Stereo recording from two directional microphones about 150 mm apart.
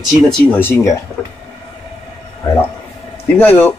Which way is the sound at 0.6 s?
20° left (ahead or behind).